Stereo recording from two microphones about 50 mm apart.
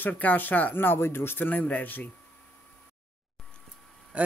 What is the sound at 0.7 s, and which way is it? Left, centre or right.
Speech, left.